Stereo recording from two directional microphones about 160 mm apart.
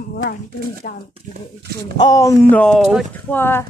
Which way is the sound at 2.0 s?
20° left (ahead or behind).